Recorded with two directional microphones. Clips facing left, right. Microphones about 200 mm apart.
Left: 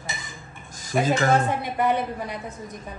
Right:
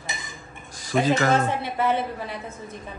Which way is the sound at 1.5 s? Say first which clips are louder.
Left 1 dB; 15° left (ahead or behind).